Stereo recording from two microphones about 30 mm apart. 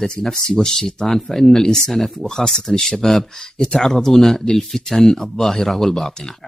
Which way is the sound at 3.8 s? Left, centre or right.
Centre.